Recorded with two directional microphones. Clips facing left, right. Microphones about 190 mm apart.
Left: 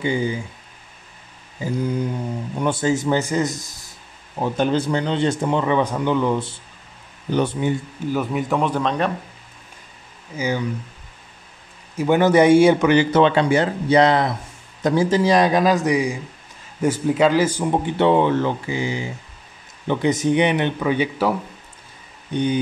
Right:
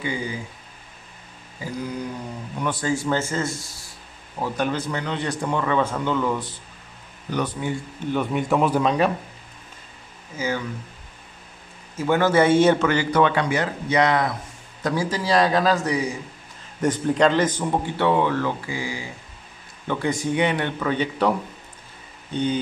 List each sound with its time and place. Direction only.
0.0 s speech: 25° left (ahead or behind)
1.6 s speech: 25° left (ahead or behind)
8.0 s speech: 5° left (ahead or behind)
10.3 s speech: 15° left (ahead or behind)
12.0 s speech: 15° left (ahead or behind)